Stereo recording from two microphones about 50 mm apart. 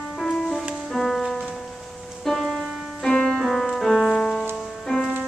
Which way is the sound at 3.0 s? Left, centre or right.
Centre.